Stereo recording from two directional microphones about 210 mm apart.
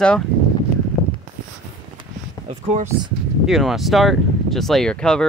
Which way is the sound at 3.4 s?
Centre (ahead or behind).